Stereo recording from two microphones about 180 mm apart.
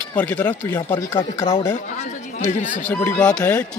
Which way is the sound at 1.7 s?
40° left (ahead or behind).